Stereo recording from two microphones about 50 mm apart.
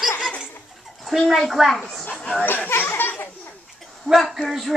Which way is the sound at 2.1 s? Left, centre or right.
Left.